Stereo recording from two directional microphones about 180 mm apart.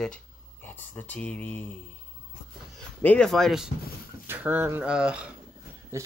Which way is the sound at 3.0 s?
5° left (ahead or behind).